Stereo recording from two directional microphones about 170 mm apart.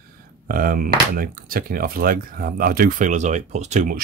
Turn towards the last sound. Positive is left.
turn(degrees=-45)  # may be behind; listen again after turning